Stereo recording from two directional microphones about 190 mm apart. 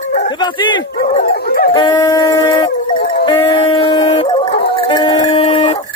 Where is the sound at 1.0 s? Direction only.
45° left (ahead or behind).